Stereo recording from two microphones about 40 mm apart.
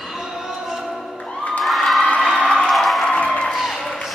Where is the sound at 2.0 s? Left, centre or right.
Left.